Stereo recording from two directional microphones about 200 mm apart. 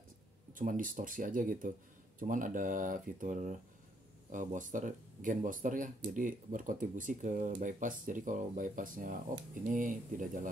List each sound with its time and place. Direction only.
0.6 s speech: 40° right (ahead or behind)